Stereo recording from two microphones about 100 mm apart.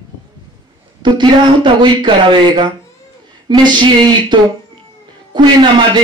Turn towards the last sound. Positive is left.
turn(degrees=-50)  # may be behind; listen again after turning